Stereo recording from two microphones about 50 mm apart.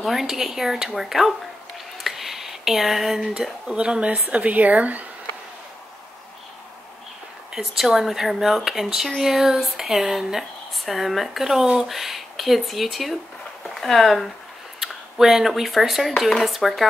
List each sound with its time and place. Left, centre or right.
0.0 s speech: centre
2.0 s a sound: centre
3.7 s speech: centre
7.5 s speech: centre